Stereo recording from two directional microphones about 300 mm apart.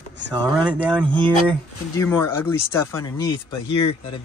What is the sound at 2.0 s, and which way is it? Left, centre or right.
Speech, centre.